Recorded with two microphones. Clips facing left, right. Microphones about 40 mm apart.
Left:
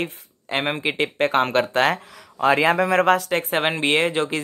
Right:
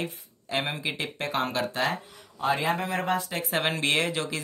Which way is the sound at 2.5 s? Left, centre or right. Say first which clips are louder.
Left 9 dB; left.